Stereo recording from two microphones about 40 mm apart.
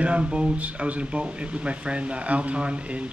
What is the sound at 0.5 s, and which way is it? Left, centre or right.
Speech, right.